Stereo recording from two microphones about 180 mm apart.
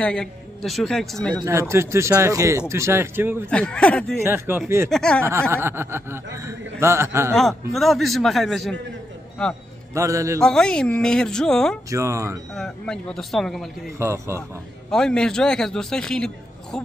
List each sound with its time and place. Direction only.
0.0 s a man's voice: 5° left (ahead or behind)
1.4 s a man's voice: 15° right (ahead or behind)
3.4 s a man's voice: 5° left (ahead or behind)
4.2 s a man's voice: 10° right (ahead or behind)
4.8 s a man's voice: 5° left (ahead or behind)
5.5 s a man's voice: 15° right (ahead or behind)
7.3 s a man's voice: centre (ahead or behind)
9.9 s a man's voice: 15° right (ahead or behind)
10.4 s a man's voice: 5° left (ahead or behind)
11.9 s a man's voice: 15° right (ahead or behind)
12.5 s a man's voice: 5° left (ahead or behind)
13.9 s a man's voice: 15° right (ahead or behind)
14.9 s a man's voice: 5° left (ahead or behind)